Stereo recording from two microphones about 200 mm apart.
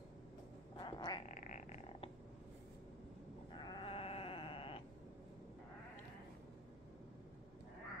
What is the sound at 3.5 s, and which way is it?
Sheep, 25° left (ahead or behind).